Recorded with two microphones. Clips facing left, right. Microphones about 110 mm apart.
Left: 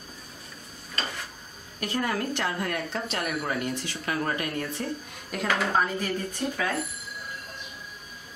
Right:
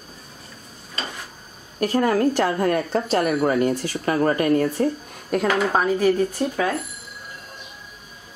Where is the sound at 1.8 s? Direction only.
45° right (ahead or behind).